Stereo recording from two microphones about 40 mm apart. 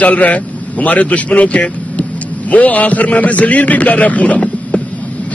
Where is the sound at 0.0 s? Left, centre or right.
Left.